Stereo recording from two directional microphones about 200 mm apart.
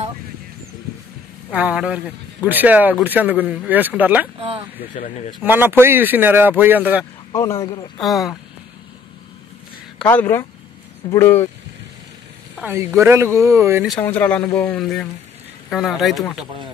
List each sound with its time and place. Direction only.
1.5 s speech: 5° right (ahead or behind)
4.7 s speech: 35° left (ahead or behind)
5.4 s speech: 10° right (ahead or behind)
9.9 s speech: 10° left (ahead or behind)
12.6 s speech: 10° right (ahead or behind)
14.0 s speech: 10° left (ahead or behind)